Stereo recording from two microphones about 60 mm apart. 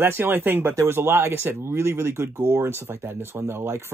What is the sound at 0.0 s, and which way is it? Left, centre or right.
Speech, right.